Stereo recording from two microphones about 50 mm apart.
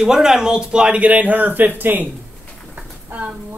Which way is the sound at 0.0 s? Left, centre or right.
Centre.